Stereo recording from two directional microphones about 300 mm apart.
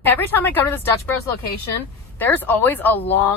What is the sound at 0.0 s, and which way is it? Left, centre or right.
Speech, centre.